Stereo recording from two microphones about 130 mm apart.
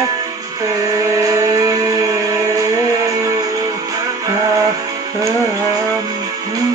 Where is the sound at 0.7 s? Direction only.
25° right (ahead or behind).